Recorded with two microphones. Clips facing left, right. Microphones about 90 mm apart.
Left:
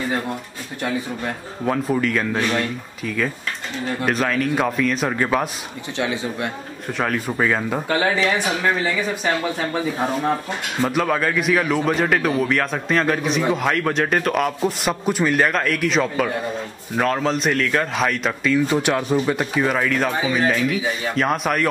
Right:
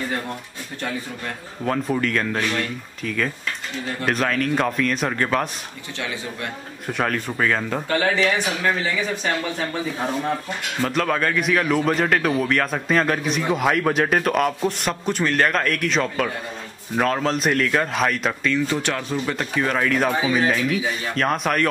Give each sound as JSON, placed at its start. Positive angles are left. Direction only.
{"t": 1.7, "sound": "a man's voice", "side_deg": 5}
{"t": 5.9, "sound": "speech", "side_deg": 20}
{"t": 6.9, "sound": "speech", "side_deg": 0}
{"t": 10.8, "sound": "a man's voice", "side_deg": 5}
{"t": 18.7, "sound": "a man's voice", "side_deg": 15}